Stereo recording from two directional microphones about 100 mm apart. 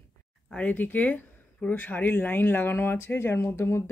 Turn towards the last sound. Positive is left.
turn(degrees=25)  # may be behind; listen again after turning